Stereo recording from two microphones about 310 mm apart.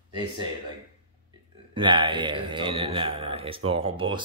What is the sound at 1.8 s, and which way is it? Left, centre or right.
A man's voice, centre.